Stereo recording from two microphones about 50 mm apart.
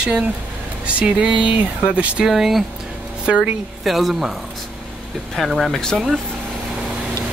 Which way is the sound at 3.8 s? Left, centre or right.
Centre.